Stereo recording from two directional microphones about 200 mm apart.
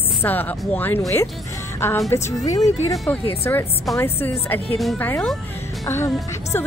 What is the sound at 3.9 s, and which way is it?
Speech, 10° left (ahead or behind).